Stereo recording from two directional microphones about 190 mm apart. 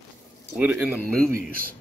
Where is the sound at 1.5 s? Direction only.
50° right (ahead or behind).